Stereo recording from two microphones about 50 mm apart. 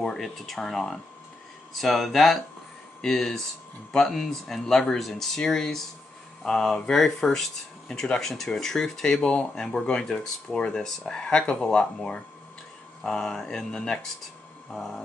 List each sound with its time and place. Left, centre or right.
0.0 s speech: centre